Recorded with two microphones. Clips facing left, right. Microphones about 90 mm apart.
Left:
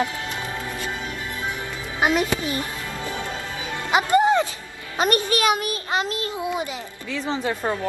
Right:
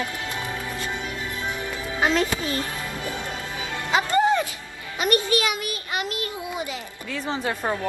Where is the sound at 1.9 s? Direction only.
20° left (ahead or behind).